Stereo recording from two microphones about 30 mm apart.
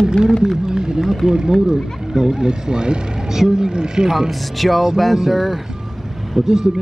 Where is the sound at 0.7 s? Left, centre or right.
Right.